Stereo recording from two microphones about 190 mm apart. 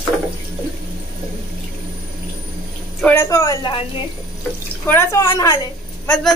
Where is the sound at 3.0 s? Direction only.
15° left (ahead or behind).